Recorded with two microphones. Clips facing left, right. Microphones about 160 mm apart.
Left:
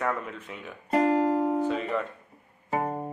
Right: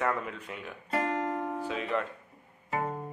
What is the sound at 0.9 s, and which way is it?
Music, 35° left (ahead or behind).